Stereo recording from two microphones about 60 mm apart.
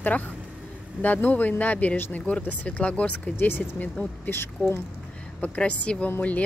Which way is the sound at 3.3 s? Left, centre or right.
Left.